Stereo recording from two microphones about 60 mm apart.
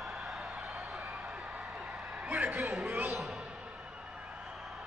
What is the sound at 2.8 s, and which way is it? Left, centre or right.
Speech, right.